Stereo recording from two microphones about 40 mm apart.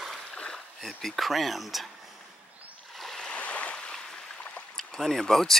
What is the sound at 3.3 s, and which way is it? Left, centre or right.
Stream, left.